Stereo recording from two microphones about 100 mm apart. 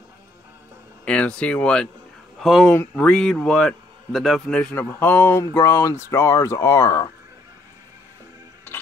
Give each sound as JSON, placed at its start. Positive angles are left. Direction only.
{"t": 1.0, "sound": "a man's voice", "side_deg": 10}
{"t": 2.7, "sound": "speech", "side_deg": 25}
{"t": 3.1, "sound": "a man's voice", "side_deg": 5}
{"t": 4.7, "sound": "speech", "side_deg": 20}